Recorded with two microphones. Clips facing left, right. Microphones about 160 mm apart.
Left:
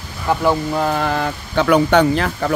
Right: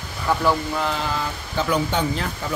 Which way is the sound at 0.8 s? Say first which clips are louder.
Left 6 dB; 55° left (ahead or behind).